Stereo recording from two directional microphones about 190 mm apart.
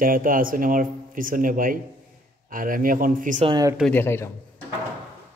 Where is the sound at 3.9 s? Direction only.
10° left (ahead or behind).